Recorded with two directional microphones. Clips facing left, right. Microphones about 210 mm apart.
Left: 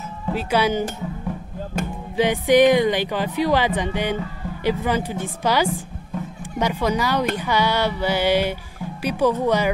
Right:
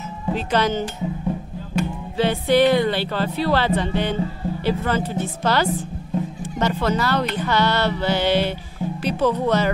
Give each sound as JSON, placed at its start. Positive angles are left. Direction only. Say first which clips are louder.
{"t": 0.3, "sound": "speech", "louder": "even", "side_deg": 10}
{"t": 1.8, "sound": "music", "louder": "right 4 dB", "side_deg": 50}
{"t": 2.1, "sound": "speech", "louder": "left 2 dB", "side_deg": 15}